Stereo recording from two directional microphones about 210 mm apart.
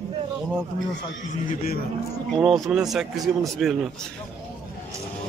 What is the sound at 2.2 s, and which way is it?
A man's voice, centre (ahead or behind).